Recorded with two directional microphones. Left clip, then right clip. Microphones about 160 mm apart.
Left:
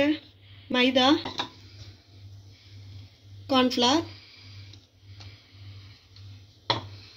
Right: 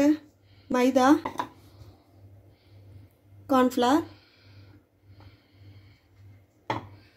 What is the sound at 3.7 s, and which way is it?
Speech, 40° right (ahead or behind).